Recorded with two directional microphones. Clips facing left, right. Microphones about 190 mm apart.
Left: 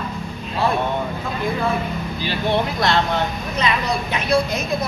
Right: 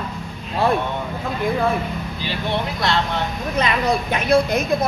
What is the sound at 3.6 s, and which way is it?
A woman's voice, 50° right (ahead or behind).